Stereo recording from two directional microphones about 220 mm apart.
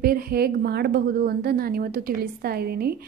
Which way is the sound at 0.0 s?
45° right (ahead or behind).